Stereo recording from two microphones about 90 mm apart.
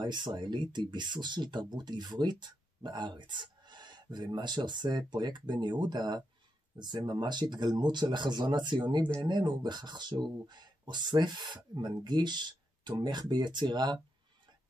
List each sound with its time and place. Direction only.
0.0 s speech: 55° right (ahead or behind)